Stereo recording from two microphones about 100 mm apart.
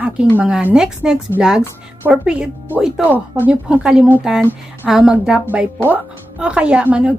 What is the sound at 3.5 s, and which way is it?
A woman's voice, 10° right (ahead or behind).